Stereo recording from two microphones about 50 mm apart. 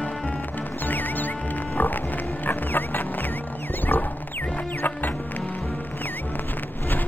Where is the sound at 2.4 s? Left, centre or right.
Left.